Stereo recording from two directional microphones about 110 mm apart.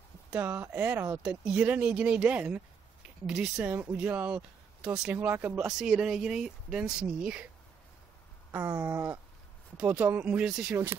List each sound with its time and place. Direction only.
0.3 s speech: 20° right (ahead or behind)
5.8 s speech: 5° right (ahead or behind)
8.5 s a sound: 20° right (ahead or behind)
9.8 s speech: 10° right (ahead or behind)